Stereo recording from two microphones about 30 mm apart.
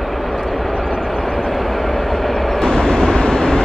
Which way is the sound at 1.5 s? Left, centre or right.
Centre.